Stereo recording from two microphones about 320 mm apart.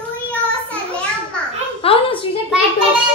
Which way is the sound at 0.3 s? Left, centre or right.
Centre.